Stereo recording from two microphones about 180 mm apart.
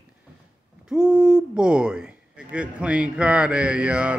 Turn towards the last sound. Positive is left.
turn(degrees=-5)  # may be behind; listen again after turning